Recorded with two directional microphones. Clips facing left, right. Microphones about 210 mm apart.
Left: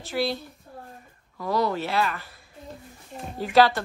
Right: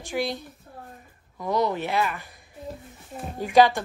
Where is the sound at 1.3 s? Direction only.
20° right (ahead or behind).